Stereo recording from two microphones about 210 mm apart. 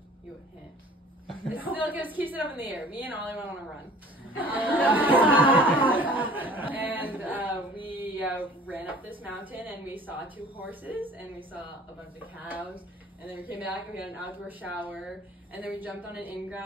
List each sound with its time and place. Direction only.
1.5 s speech: 10° right (ahead or behind)
7.8 s a sound: 10° right (ahead or behind)
9.5 s speech: 10° right (ahead or behind)